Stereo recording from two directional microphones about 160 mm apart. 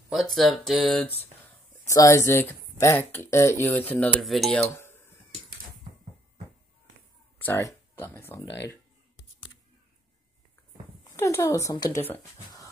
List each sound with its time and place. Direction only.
0.1 s speech: centre (ahead or behind)
1.9 s speech: 20° left (ahead or behind); by 4.6 s centre (ahead or behind)
4.7 s a sound: 15° left (ahead or behind)
7.3 s speech: 15° left (ahead or behind)
11.1 s speech: 15° left (ahead or behind)